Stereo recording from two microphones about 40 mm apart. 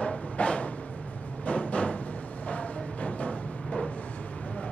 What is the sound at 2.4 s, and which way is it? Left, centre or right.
Music, left.